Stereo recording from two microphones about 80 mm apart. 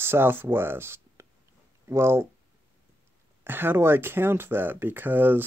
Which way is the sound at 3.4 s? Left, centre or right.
Right.